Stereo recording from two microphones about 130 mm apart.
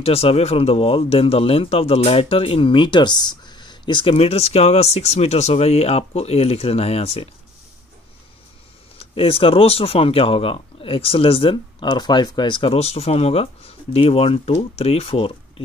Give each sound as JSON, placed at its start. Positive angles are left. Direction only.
{"t": 0.0, "sound": "speech", "side_deg": 50}
{"t": 8.9, "sound": "speech", "side_deg": 45}